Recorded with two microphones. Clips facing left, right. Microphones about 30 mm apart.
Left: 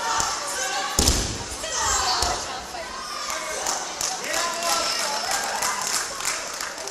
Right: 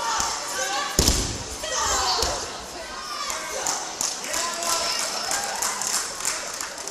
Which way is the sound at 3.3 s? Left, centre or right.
Centre.